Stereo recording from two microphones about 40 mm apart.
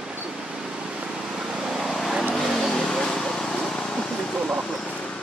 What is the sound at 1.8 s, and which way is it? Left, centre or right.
Vehicle, centre.